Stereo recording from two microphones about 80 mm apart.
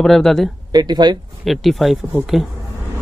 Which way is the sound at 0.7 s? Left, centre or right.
Right.